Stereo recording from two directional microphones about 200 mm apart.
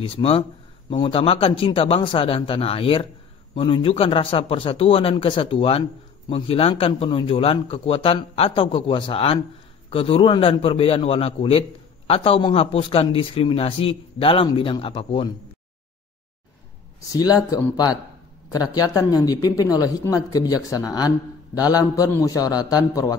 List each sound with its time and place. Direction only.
0.0 s a man's voice: 25° left (ahead or behind)
17.1 s a man's voice: 20° left (ahead or behind)